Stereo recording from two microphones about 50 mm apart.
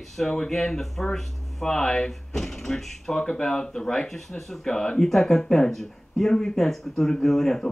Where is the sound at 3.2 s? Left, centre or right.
Centre.